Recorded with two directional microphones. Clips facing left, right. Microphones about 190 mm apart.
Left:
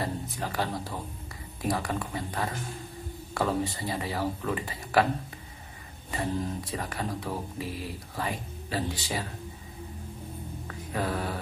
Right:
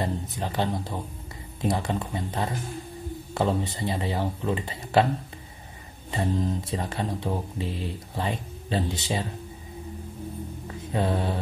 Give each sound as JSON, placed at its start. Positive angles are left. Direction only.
{"t": 0.0, "sound": "speech", "side_deg": -20}
{"t": 6.1, "sound": "speech", "side_deg": -25}
{"t": 10.7, "sound": "mantra", "side_deg": -25}